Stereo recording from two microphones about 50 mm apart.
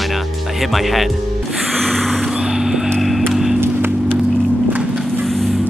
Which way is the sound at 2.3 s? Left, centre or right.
Centre.